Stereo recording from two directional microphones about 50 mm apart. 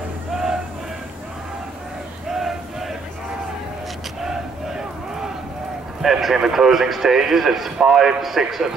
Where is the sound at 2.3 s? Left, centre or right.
Centre.